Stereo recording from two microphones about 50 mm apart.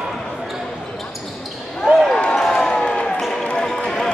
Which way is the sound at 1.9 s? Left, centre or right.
Centre.